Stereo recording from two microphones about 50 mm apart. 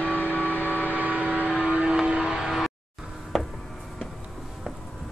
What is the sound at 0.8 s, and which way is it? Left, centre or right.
Vehicle, right.